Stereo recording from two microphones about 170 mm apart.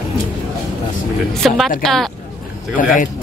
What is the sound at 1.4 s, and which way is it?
Speech, centre (ahead or behind).